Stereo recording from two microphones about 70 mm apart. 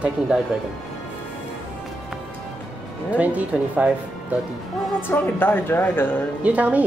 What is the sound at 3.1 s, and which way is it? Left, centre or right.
Speech, right.